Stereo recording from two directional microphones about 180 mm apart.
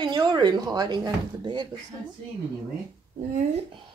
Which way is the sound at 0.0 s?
20° right (ahead or behind).